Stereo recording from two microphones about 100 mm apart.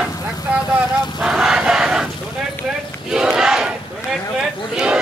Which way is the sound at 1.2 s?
5° right (ahead or behind).